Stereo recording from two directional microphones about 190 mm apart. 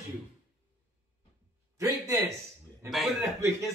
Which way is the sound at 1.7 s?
15° right (ahead or behind).